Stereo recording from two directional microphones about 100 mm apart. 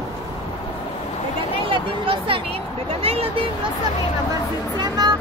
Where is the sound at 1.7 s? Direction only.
60° right (ahead or behind).